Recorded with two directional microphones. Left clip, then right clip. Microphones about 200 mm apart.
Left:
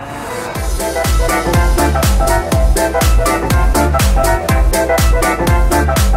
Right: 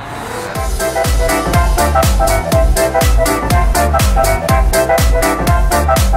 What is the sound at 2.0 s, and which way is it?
Music, centre (ahead or behind).